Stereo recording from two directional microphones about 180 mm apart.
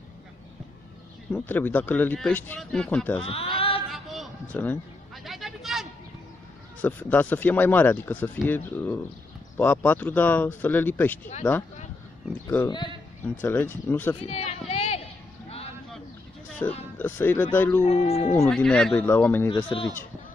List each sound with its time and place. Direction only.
1.3 s speech: 10° left (ahead or behind)
3.3 s speech: 30° left (ahead or behind)
3.9 s a sound: centre (ahead or behind)
6.8 s speech: 10° left (ahead or behind)
12.6 s speech: 25° left (ahead or behind)
13.4 s speech: 10° left (ahead or behind)
14.2 s a sound: 35° left (ahead or behind)
16.6 s speech: 15° left (ahead or behind)
17.8 s speech: 35° left (ahead or behind)
18.5 s speech: 5° left (ahead or behind)
19.5 s speech: 30° left (ahead or behind)